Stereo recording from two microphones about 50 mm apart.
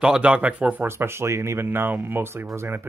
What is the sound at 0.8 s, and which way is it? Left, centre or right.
Speech, right.